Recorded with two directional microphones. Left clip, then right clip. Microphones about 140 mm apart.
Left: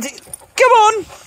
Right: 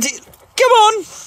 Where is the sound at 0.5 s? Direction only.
30° right (ahead or behind).